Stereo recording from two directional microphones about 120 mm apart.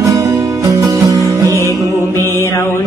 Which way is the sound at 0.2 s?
25° right (ahead or behind).